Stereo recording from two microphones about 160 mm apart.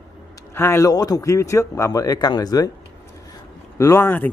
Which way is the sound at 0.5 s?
15° left (ahead or behind).